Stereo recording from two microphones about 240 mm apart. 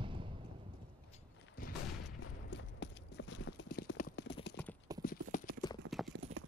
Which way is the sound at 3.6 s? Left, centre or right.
Left.